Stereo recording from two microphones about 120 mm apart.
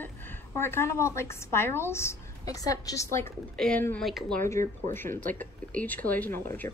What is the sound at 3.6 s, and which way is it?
Speech, 5° left (ahead or behind).